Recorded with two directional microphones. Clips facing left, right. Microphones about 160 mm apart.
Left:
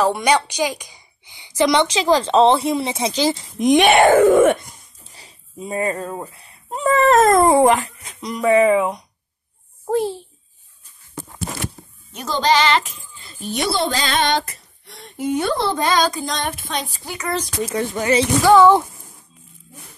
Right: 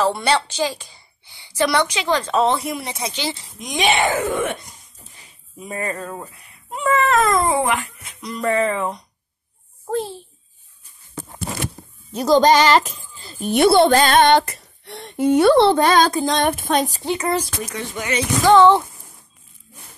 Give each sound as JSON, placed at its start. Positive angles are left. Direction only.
{"t": 0.0, "sound": "a woman's voice", "side_deg": 15}
{"t": 1.9, "sound": "speech", "side_deg": 35}
{"t": 3.1, "sound": "speech", "side_deg": 40}
{"t": 3.5, "sound": "speech", "side_deg": 60}
{"t": 5.1, "sound": "speech", "side_deg": 30}
{"t": 8.2, "sound": "a child's voice", "side_deg": 15}
{"t": 12.1, "sound": "speech", "side_deg": -35}
{"t": 13.4, "sound": "female singing", "side_deg": -55}
{"t": 17.0, "sound": "speech", "side_deg": -25}
{"t": 17.7, "sound": "speech", "side_deg": 35}
{"t": 18.5, "sound": "speech", "side_deg": 10}